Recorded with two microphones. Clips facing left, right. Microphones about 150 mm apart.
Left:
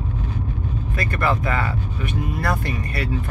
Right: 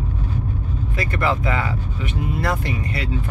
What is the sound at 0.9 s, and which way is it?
Speech, 20° right (ahead or behind).